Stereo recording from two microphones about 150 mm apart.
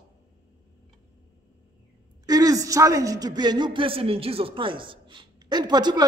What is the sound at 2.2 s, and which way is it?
A man's voice, 25° right (ahead or behind).